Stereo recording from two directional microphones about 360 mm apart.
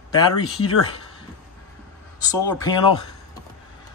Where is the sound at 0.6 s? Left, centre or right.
Left.